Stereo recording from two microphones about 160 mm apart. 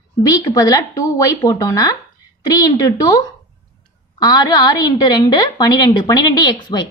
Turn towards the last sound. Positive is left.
turn(degrees=30)  # may be behind; listen again after turning